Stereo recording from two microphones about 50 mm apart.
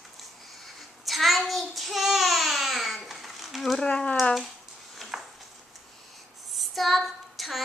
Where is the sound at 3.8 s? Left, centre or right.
Left.